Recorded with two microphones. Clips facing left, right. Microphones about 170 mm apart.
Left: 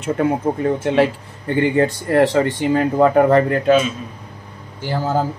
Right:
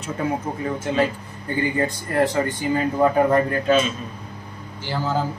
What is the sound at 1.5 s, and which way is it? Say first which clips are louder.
Speech: left 6 dB; 75° left (ahead or behind).